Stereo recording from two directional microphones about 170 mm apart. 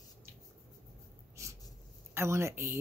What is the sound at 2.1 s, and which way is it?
Speech, 15° right (ahead or behind).